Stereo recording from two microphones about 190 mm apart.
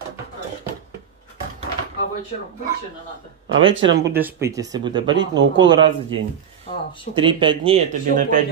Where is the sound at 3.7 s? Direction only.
80° right.